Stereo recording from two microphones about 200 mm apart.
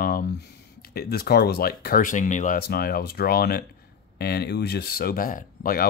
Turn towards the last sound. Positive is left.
turn(degrees=45)  # may be behind; listen again after turning